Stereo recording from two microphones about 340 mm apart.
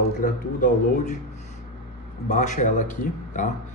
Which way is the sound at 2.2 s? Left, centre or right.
Left.